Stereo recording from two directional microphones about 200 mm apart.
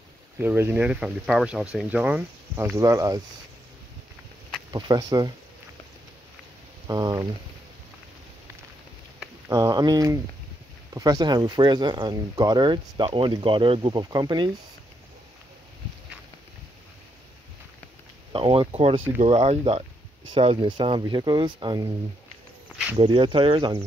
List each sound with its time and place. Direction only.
0.4 s speech: 10° right (ahead or behind)
4.6 s speech: 20° right (ahead or behind)
6.9 s speech: 20° right (ahead or behind)
9.5 s speech: 20° right (ahead or behind)
18.3 s speech: 25° right (ahead or behind)
22.9 s speech: 25° right (ahead or behind)